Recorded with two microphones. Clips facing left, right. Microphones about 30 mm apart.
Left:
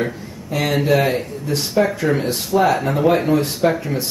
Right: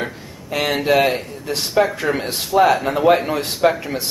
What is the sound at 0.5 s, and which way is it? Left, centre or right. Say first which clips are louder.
Speech: even; centre.